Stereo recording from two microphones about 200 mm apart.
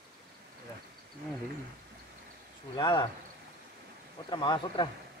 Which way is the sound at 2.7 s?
20° left (ahead or behind).